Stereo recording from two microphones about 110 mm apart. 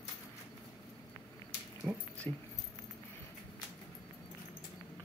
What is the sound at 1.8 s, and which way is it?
Speech, 5° left (ahead or behind).